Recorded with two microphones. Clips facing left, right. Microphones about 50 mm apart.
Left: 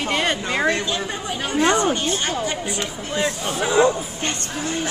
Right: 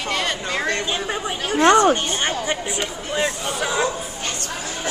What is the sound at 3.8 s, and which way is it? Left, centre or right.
Bow-wow, left.